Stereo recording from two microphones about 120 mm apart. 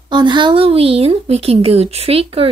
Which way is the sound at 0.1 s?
40° right (ahead or behind).